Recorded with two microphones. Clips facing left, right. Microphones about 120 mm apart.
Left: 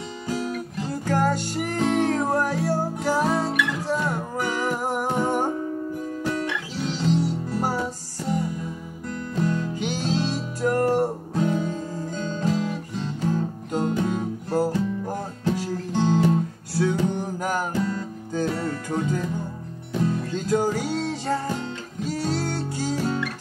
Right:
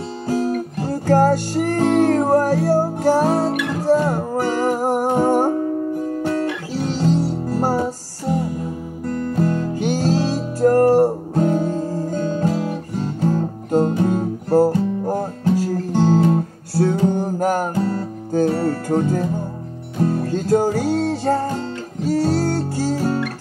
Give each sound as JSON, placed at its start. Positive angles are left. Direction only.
{"t": 0.3, "sound": "music", "side_deg": -40}